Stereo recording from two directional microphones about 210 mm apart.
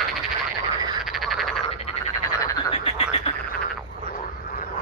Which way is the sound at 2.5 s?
25° left (ahead or behind).